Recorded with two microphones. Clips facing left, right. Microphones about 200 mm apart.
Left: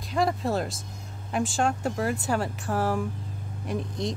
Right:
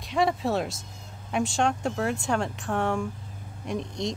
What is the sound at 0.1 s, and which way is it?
Speech, centre (ahead or behind).